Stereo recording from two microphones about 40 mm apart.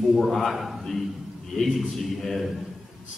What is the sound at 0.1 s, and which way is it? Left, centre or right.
A man's voice, centre.